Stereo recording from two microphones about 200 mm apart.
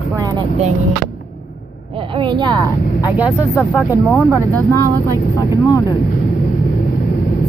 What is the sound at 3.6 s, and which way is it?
Speech, 5° left (ahead or behind).